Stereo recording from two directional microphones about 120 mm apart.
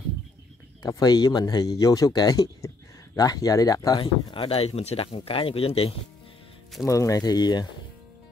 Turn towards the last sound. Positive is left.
turn(degrees=35)  # may be behind; listen again after turning